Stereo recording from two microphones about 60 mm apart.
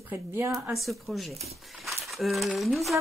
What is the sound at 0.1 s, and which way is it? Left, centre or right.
Speech, right.